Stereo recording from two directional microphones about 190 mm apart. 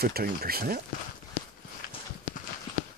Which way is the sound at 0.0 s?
55° right (ahead or behind).